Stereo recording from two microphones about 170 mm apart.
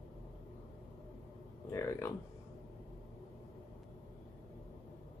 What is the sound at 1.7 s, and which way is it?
Speech, 15° left (ahead or behind).